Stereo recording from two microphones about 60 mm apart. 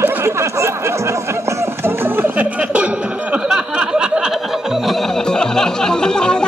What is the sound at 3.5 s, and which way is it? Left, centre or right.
Music, centre.